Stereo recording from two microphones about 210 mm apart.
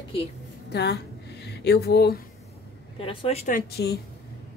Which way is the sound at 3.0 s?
30° left (ahead or behind).